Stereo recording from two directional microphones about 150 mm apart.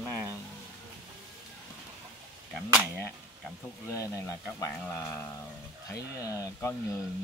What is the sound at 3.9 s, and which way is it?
Speech, 20° left (ahead or behind).